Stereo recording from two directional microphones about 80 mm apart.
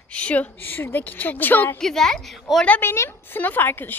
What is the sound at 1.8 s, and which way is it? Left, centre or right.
Speech, centre.